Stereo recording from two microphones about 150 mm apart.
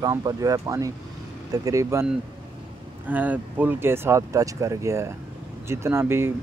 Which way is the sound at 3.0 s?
10° right (ahead or behind).